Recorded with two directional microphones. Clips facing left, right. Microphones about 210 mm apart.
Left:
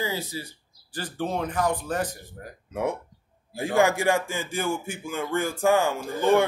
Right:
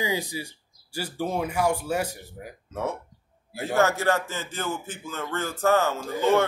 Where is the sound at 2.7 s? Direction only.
15° left (ahead or behind).